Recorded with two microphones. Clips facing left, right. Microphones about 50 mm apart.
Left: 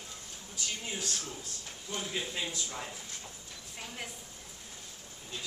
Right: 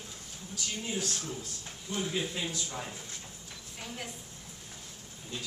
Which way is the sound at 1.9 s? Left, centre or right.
Centre.